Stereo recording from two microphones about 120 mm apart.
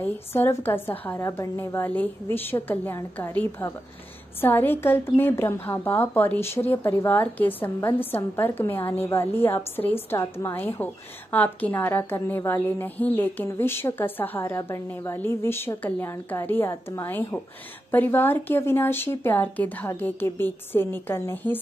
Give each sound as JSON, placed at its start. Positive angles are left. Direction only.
{"t": 0.0, "sound": "a woman's voice", "side_deg": 15}